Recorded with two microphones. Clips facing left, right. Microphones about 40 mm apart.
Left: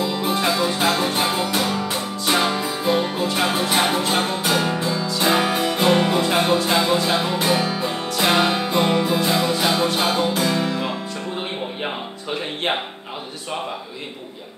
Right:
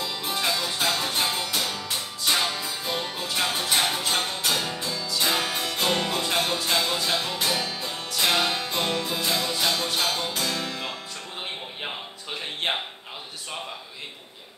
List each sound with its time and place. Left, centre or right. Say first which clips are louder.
0.0 s music: left 7 dB; centre